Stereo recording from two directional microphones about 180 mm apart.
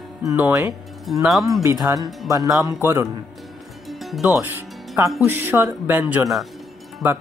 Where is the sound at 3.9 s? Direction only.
Centre (ahead or behind).